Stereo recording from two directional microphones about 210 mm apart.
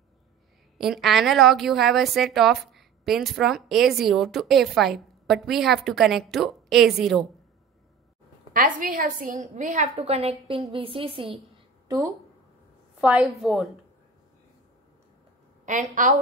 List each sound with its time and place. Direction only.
0.7 s a woman's voice: centre (ahead or behind)
8.5 s a woman's voice: 40° right (ahead or behind)
13.0 s a woman's voice: centre (ahead or behind)
15.6 s a woman's voice: 40° right (ahead or behind)